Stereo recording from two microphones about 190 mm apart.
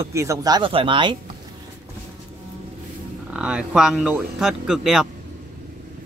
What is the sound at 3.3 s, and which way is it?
Speech, 5° right (ahead or behind).